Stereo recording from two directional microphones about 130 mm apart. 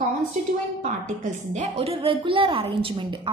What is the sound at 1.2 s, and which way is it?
A woman's voice, 55° right (ahead or behind).